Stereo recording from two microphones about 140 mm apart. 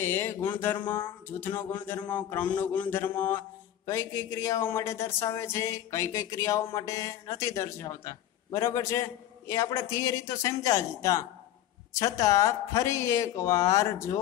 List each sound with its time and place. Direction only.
0.0 s a sound: 15° left (ahead or behind)
0.8 s speech: 15° left (ahead or behind)
2.0 s mantra: 10° left (ahead or behind)